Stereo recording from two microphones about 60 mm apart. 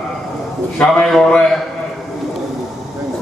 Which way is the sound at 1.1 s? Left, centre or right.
Centre.